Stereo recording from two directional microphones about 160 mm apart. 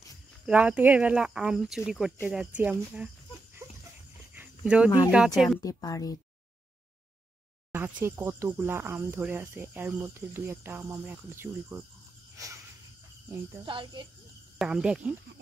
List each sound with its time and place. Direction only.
0.5 s speech: 10° right (ahead or behind)
4.4 s a sound: 5° right (ahead or behind)
5.1 s speech: centre (ahead or behind)
5.6 s a woman's voice: 20° left (ahead or behind)
7.7 s speech: 15° right (ahead or behind)
13.7 s speech: 30° right (ahead or behind)
14.6 s speech: 5° right (ahead or behind)